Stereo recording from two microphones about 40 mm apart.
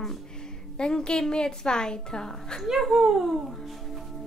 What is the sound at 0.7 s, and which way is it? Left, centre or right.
A woman's voice, centre.